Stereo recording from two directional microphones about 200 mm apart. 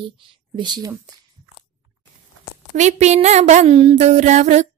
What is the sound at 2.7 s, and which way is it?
Speech, 35° right (ahead or behind).